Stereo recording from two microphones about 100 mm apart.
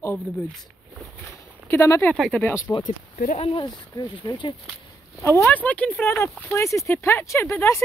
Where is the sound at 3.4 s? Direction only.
70° left (ahead or behind).